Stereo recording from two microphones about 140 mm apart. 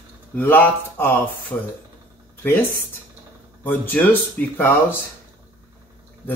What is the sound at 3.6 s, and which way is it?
Speech, 15° left (ahead or behind).